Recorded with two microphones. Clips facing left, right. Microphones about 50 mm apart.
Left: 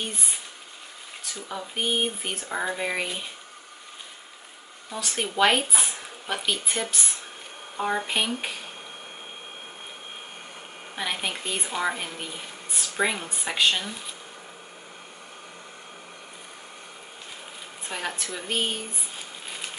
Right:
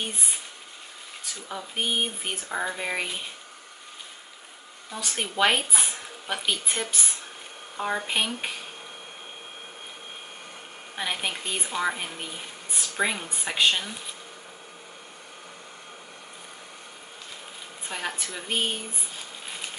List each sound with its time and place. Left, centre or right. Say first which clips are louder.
1.5 s speech: left 1 dB; centre
4.9 s speech: left 2 dB; centre
11.0 s speech: even; centre
17.8 s speech: left 1 dB; centre
19.4 s a sound: even; centre